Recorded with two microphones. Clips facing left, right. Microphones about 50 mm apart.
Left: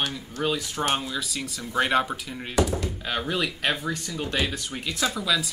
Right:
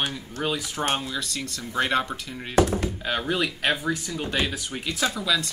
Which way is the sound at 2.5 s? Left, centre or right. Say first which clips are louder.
Right 3 dB; right.